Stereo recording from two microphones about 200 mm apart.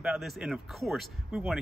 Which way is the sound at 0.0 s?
Centre (ahead or behind).